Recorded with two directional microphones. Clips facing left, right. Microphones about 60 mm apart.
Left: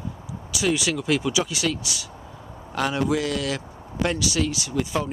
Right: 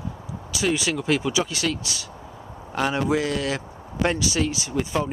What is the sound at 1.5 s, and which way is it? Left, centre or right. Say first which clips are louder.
Speech: even; centre.